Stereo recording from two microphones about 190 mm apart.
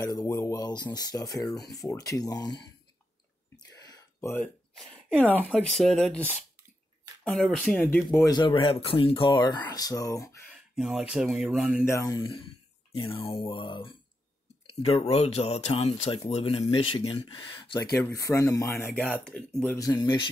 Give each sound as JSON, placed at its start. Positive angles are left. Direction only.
{"t": 0.3, "sound": "speech", "side_deg": 15}
{"t": 3.5, "sound": "whispering", "side_deg": 20}
{"t": 5.2, "sound": "speech", "side_deg": 10}
{"t": 8.3, "sound": "speech", "side_deg": 25}
{"t": 10.8, "sound": "speech", "side_deg": 0}
{"t": 11.8, "sound": "speech", "side_deg": 15}
{"t": 19.8, "sound": "speech", "side_deg": 20}